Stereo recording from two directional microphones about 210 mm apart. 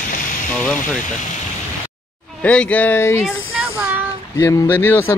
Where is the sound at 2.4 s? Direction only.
5° left (ahead or behind).